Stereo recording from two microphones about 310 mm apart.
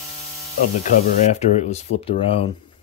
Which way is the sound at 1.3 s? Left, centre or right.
Left.